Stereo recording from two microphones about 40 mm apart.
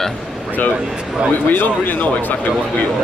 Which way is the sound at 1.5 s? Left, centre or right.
Left.